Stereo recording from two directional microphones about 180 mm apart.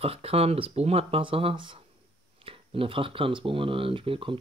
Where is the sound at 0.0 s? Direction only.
30° right (ahead or behind).